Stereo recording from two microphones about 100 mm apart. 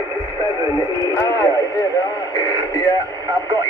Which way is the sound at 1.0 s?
35° left (ahead or behind).